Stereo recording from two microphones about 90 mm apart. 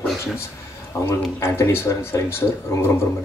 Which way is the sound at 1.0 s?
30° left (ahead or behind).